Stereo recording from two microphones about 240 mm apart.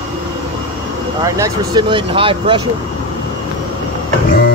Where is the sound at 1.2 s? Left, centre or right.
Centre.